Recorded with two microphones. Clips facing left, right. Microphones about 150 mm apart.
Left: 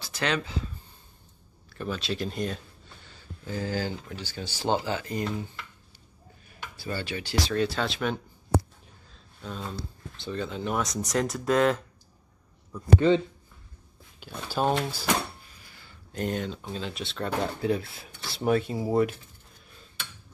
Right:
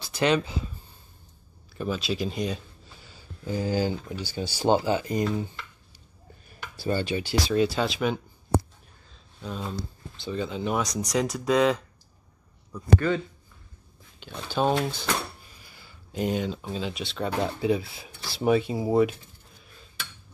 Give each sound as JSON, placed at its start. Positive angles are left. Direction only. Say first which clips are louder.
{"t": 0.0, "sound": "speech", "louder": "right 5 dB", "side_deg": -15}
{"t": 1.7, "sound": "speech", "louder": "right 3 dB", "side_deg": -10}
{"t": 6.8, "sound": "speech", "louder": "right 7 dB", "side_deg": -20}
{"t": 9.4, "sound": "speech", "louder": "right 3 dB", "side_deg": -5}
{"t": 14.2, "sound": "speech", "louder": "right 2 dB", "side_deg": 5}
{"t": 15.7, "sound": "speech", "louder": "right 3 dB", "side_deg": -10}